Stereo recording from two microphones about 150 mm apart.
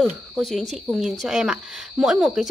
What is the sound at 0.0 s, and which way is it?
Speech, centre (ahead or behind).